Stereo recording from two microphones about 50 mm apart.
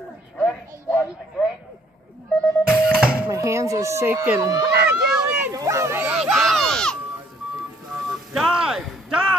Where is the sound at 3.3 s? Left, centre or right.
Right.